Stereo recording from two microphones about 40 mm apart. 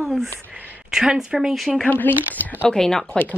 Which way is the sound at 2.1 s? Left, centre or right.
Right.